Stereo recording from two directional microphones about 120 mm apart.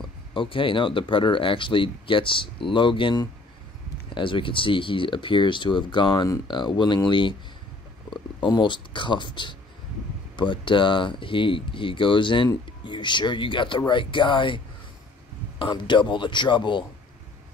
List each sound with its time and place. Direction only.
0.3 s speech: 45° left (ahead or behind)
15.6 s speech: 40° left (ahead or behind)